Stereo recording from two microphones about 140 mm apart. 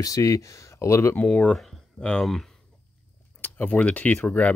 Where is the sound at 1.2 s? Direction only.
10° left (ahead or behind).